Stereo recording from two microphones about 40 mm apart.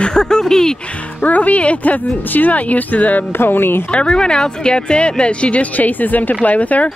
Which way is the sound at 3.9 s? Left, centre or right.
Left.